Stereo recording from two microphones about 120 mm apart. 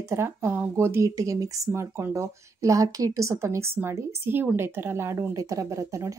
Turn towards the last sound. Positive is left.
turn(degrees=-25)  # may be behind; listen again after turning